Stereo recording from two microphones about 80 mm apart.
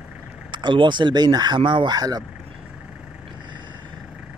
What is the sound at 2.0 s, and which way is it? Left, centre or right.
Speech, right.